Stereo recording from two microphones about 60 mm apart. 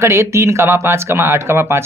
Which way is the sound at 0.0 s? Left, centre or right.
Right.